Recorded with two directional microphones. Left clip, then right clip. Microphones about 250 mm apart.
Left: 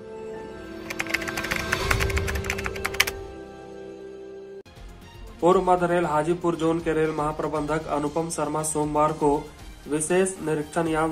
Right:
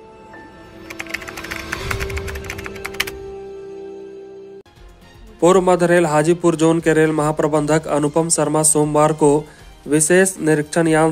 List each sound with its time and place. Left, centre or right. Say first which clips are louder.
0.8 s typing: even; centre
5.4 s a man's voice: right 6 dB; right